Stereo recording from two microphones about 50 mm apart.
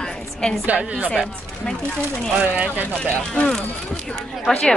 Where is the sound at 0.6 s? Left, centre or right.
Right.